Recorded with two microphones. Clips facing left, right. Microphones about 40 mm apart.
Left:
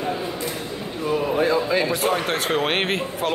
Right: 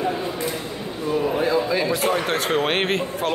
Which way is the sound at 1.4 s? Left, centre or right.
Left.